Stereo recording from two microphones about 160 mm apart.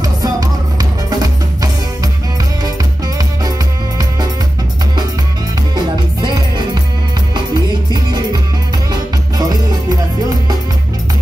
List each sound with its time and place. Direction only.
0.0 s music: 25° right (ahead or behind)
5.8 s music: 25° right (ahead or behind)
7.9 s music: 25° right (ahead or behind)
9.4 s music: 25° right (ahead or behind)